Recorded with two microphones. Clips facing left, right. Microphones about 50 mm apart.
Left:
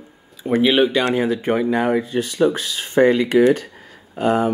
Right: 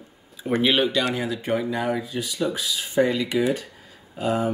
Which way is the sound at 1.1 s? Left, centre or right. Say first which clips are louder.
Left 6 dB; left.